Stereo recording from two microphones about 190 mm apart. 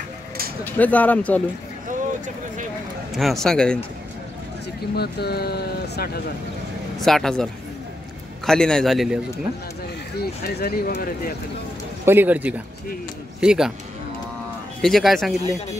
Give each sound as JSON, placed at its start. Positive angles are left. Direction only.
{"t": 0.7, "sound": "speech", "side_deg": 10}
{"t": 1.9, "sound": "a sound", "side_deg": -40}
{"t": 3.1, "sound": "a man's voice", "side_deg": 0}
{"t": 4.9, "sound": "speech", "side_deg": 55}
{"t": 7.0, "sound": "a man's voice", "side_deg": 0}
{"t": 8.5, "sound": "a man's voice", "side_deg": 5}
{"t": 10.4, "sound": "speech", "side_deg": 50}
{"t": 12.0, "sound": "a man's voice", "side_deg": -10}
{"t": 14.8, "sound": "a man's voice", "side_deg": 0}